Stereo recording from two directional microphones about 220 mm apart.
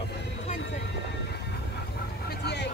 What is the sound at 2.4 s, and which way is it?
Vehicle, 50° left (ahead or behind).